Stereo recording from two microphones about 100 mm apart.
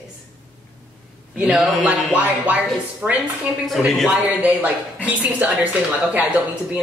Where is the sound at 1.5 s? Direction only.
Centre (ahead or behind).